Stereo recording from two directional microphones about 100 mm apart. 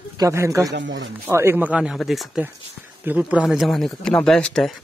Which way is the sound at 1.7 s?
5° right (ahead or behind).